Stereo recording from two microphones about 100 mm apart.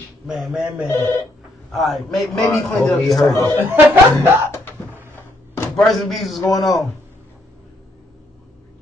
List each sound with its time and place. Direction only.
0.3 s a man's voice: 5° right (ahead or behind)
0.8 s speech: 25° left (ahead or behind)
1.7 s a man's voice: centre (ahead or behind)
3.5 s speech: 20° right (ahead or behind)
4.5 s a sound: 20° left (ahead or behind)
4.9 s a sound: 20° right (ahead or behind)
5.8 s a man's voice: centre (ahead or behind)